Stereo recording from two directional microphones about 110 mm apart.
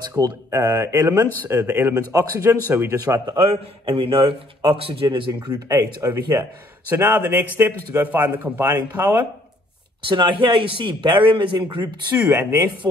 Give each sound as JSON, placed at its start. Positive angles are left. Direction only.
{"t": 0.2, "sound": "speech", "side_deg": -30}
{"t": 2.0, "sound": "speech", "side_deg": -30}
{"t": 3.3, "sound": "a man's voice", "side_deg": -60}
{"t": 5.7, "sound": "speech", "side_deg": -30}
{"t": 6.9, "sound": "speech", "side_deg": -20}
{"t": 10.0, "sound": "a man's voice", "side_deg": -45}
{"t": 12.3, "sound": "speech", "side_deg": -15}